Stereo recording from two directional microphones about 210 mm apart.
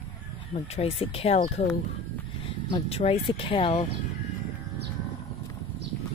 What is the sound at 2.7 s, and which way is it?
Speech, 30° left (ahead or behind).